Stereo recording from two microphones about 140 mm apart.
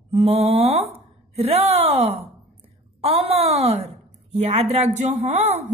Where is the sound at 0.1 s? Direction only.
45° right (ahead or behind).